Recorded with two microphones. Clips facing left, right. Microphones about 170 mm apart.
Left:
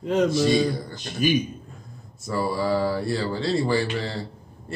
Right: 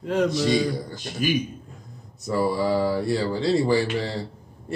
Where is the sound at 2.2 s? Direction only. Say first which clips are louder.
Right 2 dB; 15° right (ahead or behind).